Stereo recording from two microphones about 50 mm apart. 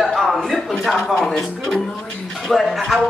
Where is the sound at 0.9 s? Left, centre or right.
Centre.